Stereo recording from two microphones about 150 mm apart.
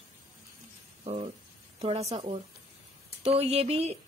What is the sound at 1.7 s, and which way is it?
Speech, 45° right (ahead or behind).